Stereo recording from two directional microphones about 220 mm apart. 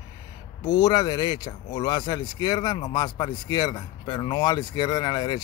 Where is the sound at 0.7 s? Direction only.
20° left (ahead or behind).